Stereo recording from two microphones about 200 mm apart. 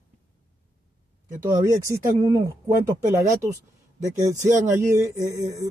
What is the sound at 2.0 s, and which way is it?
Speech, 15° right (ahead or behind).